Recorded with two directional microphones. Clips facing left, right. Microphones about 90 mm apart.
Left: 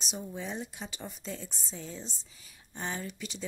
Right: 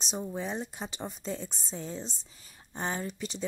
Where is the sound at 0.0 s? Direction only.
35° right (ahead or behind).